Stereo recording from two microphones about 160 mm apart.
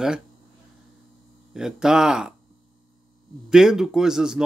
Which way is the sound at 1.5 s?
5° right (ahead or behind).